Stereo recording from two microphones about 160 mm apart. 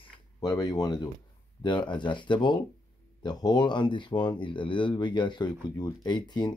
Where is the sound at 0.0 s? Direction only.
25° left (ahead or behind).